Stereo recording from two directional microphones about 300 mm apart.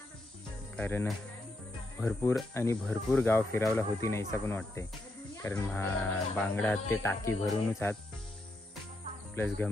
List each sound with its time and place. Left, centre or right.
0.7 s speech: centre
9.3 s speech: centre